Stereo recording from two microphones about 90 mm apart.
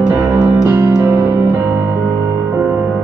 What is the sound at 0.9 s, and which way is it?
Music, 35° right (ahead or behind).